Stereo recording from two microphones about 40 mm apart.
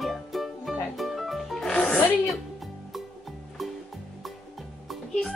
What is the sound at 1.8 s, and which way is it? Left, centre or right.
Music, left.